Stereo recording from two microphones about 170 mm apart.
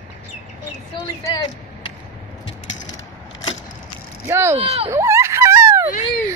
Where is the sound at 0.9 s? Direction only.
25° left (ahead or behind).